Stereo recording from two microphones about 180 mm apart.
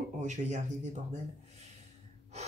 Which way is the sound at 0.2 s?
40° right (ahead or behind).